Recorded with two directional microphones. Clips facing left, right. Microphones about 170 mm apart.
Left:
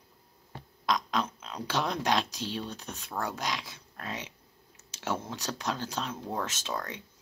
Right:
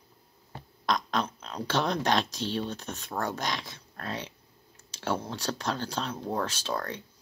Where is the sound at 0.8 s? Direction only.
10° left (ahead or behind).